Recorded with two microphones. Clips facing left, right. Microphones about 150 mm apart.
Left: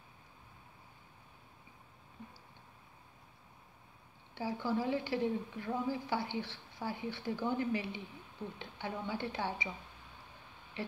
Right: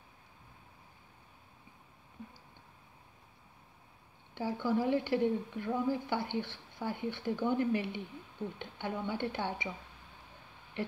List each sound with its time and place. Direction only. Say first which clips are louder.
4.4 s a woman's voice: right 3 dB; 55° right (ahead or behind)